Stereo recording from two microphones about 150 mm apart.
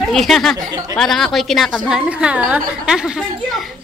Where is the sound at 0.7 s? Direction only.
25° right (ahead or behind).